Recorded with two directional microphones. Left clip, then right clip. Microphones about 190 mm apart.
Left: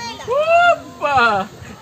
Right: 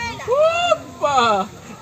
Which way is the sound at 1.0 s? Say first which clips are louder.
Right 2 dB; 10° left (ahead or behind).